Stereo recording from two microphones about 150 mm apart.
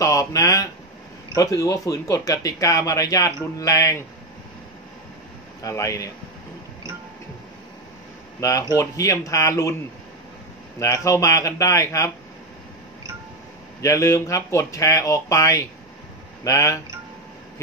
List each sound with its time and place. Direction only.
0.0 s speech: 20° left (ahead or behind)
5.6 s speech: 20° left (ahead or behind)
8.4 s speech: 20° left (ahead or behind)
10.8 s speech: 20° left (ahead or behind)
13.7 s speech: 20° left (ahead or behind)